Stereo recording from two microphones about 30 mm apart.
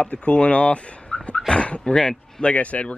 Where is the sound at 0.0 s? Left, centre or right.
Left.